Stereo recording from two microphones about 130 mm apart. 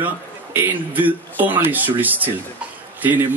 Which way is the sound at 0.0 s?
15° right (ahead or behind).